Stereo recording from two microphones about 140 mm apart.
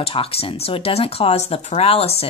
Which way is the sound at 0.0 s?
45° left (ahead or behind).